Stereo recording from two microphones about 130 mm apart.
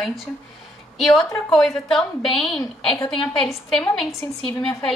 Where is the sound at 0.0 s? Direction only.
Centre (ahead or behind).